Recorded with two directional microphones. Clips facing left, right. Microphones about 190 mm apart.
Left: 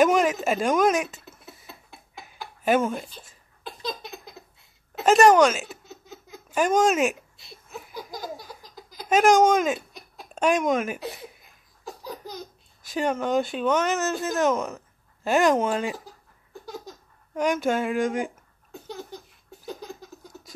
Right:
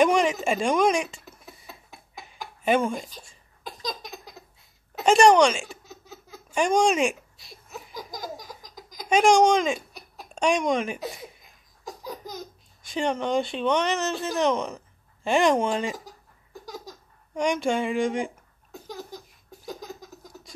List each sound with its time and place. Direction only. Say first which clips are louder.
0.0 s speech: left 1 dB; 5° left (ahead or behind)
1.9 s tick-tock: even; 15° right (ahead or behind)
2.6 s speech: left 1 dB; 5° left (ahead or behind)
5.0 s baby laughter: left 1 dB; 5° left (ahead or behind)
6.5 s speech: left 1 dB; 5° left (ahead or behind)
8.6 s baby laughter: even; 15° right (ahead or behind)
9.1 s speech: even; 5° left (ahead or behind)
12.8 s speech: left 1 dB; 5° left (ahead or behind)
17.3 s speech: left 1 dB; 5° left (ahead or behind)
19.7 s laughter: left 1 dB; 5° right (ahead or behind)